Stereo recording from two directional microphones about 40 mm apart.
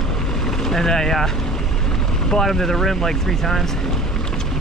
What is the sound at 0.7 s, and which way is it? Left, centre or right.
Speech, centre.